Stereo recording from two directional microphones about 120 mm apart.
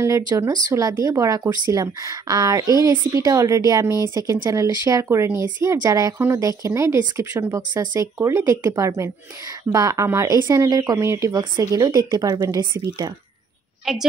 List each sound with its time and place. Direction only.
0.5 s speech: 30° right (ahead or behind)
13.9 s a woman's voice: 5° right (ahead or behind)